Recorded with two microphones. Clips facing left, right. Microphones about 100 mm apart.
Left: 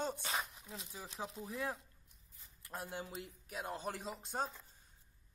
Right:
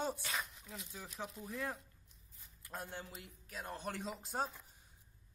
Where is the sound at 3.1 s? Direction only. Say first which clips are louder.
Left 5 dB; 20° left (ahead or behind).